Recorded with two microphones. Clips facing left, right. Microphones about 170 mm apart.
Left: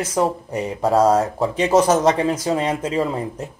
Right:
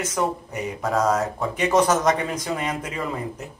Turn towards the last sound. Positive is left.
turn(degrees=30)  # may be behind; listen again after turning